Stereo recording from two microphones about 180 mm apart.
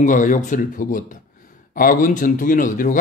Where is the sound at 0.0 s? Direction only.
45° left (ahead or behind).